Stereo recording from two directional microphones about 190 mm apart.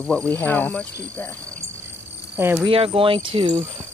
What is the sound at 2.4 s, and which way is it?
Speech, 10° right (ahead or behind).